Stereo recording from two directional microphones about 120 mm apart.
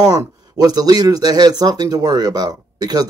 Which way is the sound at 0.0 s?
30° right (ahead or behind).